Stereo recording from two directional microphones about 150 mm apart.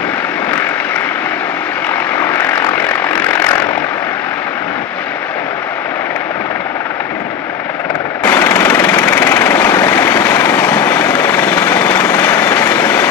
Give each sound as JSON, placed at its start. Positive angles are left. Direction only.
{"t": 2.1, "sound": "vehicle", "side_deg": 15}
{"t": 8.2, "sound": "vehicle", "side_deg": 15}